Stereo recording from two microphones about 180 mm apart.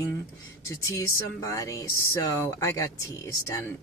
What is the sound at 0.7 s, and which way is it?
Speech, 15° left (ahead or behind).